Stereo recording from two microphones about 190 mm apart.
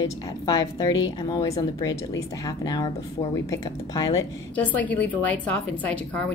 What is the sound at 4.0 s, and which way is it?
Speech, 20° left (ahead or behind).